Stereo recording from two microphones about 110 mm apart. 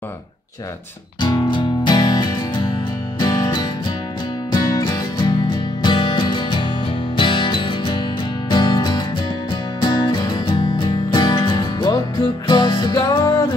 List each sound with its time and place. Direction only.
1.2 s music: 45° left (ahead or behind)